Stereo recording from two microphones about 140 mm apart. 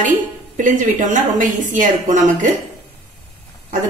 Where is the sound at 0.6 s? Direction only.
65° right (ahead or behind).